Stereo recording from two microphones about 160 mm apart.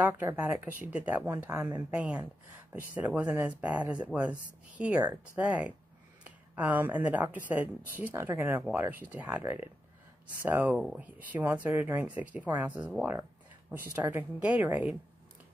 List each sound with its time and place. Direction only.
0.0 s speech: 15° right (ahead or behind)
5.0 s speech: 20° right (ahead or behind)
5.4 s speech: 10° right (ahead or behind)